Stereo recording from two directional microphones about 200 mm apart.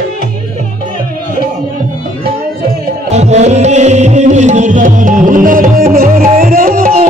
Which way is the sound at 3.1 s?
35° right (ahead or behind).